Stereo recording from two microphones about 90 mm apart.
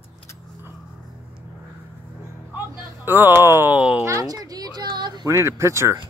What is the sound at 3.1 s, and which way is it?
Speech, 20° right (ahead or behind).